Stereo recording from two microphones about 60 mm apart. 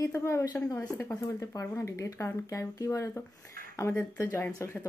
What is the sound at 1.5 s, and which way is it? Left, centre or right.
Speech, left.